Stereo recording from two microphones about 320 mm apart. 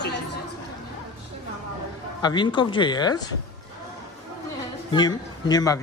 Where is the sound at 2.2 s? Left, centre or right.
Centre.